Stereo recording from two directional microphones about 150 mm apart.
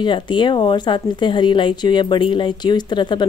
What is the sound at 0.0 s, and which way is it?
Speech, 30° left (ahead or behind).